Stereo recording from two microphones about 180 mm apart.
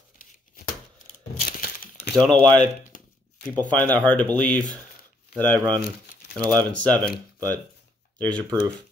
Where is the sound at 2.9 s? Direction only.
45° left (ahead or behind).